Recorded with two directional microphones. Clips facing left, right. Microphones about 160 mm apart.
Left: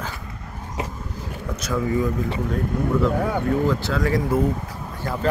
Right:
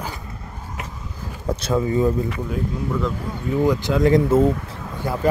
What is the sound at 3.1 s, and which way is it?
Speech, 70° left (ahead or behind).